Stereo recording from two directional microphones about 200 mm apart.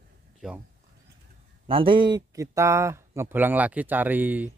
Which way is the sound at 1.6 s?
25° right (ahead or behind).